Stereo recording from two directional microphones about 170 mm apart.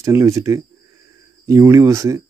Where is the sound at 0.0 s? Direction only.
20° right (ahead or behind).